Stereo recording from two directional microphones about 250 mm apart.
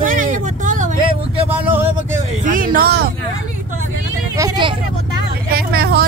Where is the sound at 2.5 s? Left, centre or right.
Right.